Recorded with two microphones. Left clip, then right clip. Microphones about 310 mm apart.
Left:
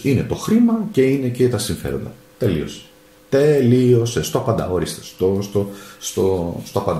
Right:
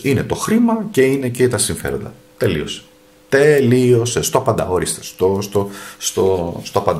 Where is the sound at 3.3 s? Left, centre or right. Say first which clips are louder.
Right 3 dB; right.